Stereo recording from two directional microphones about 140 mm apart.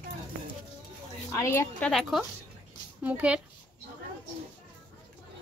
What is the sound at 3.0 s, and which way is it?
Speech, 10° right (ahead or behind).